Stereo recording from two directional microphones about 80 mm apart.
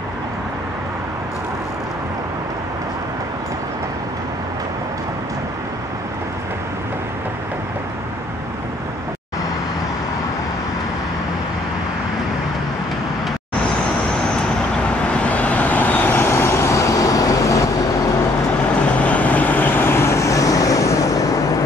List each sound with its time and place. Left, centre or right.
15.0 s vehicle: centre; by 17.6 s left
18.9 s vehicle: centre; by 21.2 s left